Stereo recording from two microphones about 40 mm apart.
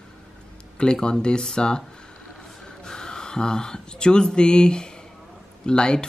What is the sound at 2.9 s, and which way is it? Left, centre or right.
Speech, centre.